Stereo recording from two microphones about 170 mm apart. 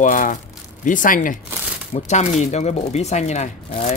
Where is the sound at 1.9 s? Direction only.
40° left (ahead or behind).